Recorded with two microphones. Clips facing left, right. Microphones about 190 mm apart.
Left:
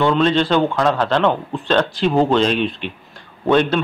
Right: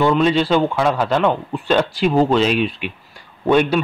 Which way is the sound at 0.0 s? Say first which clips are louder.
Even; 10° right (ahead or behind).